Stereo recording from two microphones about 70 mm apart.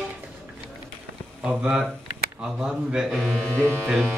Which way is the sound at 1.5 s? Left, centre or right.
Centre.